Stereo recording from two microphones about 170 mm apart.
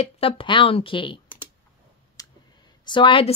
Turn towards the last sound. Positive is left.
turn(degrees=30)  # may be behind; listen again after turning